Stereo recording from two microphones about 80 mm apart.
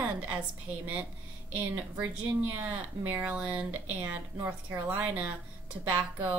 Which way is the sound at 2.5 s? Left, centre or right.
Centre.